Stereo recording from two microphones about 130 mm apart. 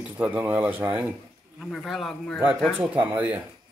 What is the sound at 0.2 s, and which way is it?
Speech, 15° right (ahead or behind).